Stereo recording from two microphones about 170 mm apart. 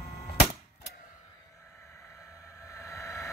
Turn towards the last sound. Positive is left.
turn(degrees=15)  # may be behind; listen again after turning